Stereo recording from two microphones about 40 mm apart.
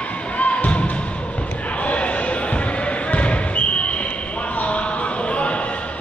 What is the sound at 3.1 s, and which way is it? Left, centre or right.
Basketball bounce, left.